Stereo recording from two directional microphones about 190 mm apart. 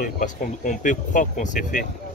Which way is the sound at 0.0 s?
40° left (ahead or behind).